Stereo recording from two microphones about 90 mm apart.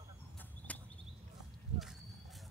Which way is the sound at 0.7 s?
15° left (ahead or behind).